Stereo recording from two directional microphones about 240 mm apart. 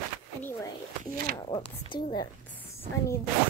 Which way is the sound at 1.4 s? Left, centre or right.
Centre.